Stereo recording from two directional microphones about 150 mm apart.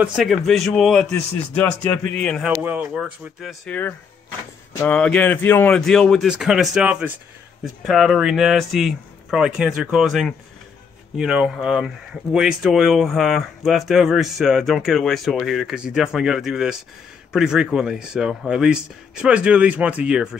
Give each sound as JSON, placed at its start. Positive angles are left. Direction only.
{"t": 0.0, "sound": "speech", "side_deg": 0}
{"t": 2.6, "sound": "speech", "side_deg": -10}
{"t": 4.7, "sound": "speech", "side_deg": 10}
{"t": 5.8, "sound": "speech", "side_deg": 0}